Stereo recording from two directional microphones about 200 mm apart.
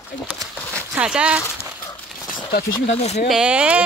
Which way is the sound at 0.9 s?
5° right (ahead or behind).